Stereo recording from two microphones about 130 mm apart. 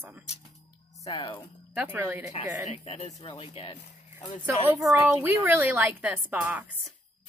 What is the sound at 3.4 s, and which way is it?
Speech, 45° left (ahead or behind).